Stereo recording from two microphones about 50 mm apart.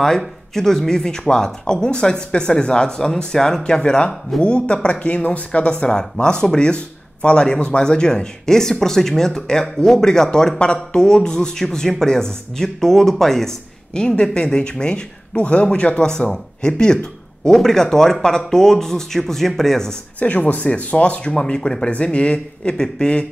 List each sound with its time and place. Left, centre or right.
0.6 s speech: centre
13.9 s speech: centre
20.2 s speech: left